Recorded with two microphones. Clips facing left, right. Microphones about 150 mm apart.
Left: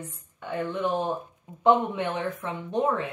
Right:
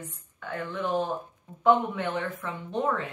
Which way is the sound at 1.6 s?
15° left (ahead or behind).